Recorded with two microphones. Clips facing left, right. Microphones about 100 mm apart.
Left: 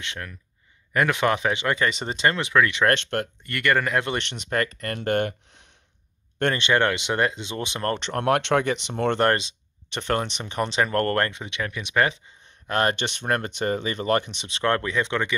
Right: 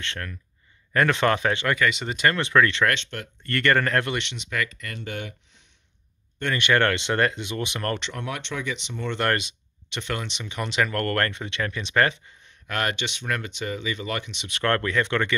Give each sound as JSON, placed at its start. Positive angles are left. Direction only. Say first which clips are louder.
{"t": 0.0, "sound": "speech", "louder": "right 1 dB", "side_deg": 10}
{"t": 1.8, "sound": "speech", "louder": "even", "side_deg": 35}
{"t": 2.5, "sound": "speech", "louder": "right 2 dB", "side_deg": 10}
{"t": 2.9, "sound": "speech", "louder": "left 5 dB", "side_deg": 55}
{"t": 3.4, "sound": "speech", "louder": "right 3 dB", "side_deg": 5}
{"t": 4.2, "sound": "speech", "louder": "left 3 dB", "side_deg": 45}
{"t": 6.5, "sound": "speech", "louder": "right 2 dB", "side_deg": 20}
{"t": 8.0, "sound": "speech", "louder": "left 10 dB", "side_deg": 55}
{"t": 9.2, "sound": "speech", "louder": "even", "side_deg": 25}
{"t": 9.8, "sound": "speech", "louder": "left 5 dB", "side_deg": 40}
{"t": 11.2, "sound": "speech", "louder": "right 1 dB", "side_deg": 15}
{"t": 12.6, "sound": "speech", "louder": "left 4 dB", "side_deg": 35}
{"t": 14.5, "sound": "speech", "louder": "even", "side_deg": 20}